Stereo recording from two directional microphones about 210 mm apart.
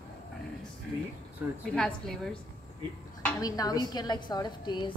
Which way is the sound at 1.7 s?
5° left (ahead or behind).